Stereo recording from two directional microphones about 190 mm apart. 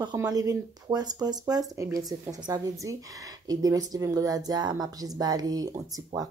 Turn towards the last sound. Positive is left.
turn(degrees=-20)  # may be behind; listen again after turning